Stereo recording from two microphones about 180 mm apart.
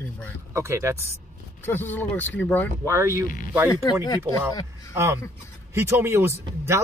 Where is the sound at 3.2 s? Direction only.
50° left (ahead or behind).